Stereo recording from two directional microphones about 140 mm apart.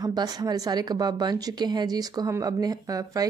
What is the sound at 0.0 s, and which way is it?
A woman's voice, 30° right (ahead or behind).